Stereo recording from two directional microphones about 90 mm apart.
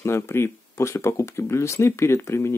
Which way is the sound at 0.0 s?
30° left (ahead or behind).